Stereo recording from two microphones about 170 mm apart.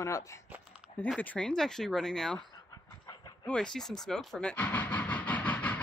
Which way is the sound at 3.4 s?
5° left (ahead or behind).